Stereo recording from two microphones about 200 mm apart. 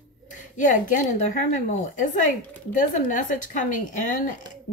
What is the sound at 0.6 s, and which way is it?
A woman's voice, 40° left (ahead or behind).